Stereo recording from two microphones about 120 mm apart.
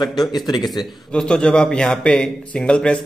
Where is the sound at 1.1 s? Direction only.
5° left (ahead or behind).